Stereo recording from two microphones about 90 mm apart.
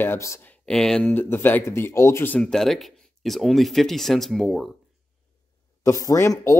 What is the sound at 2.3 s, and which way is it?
Speech, 5° left (ahead or behind).